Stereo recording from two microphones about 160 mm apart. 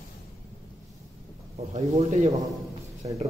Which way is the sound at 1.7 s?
45° right (ahead or behind).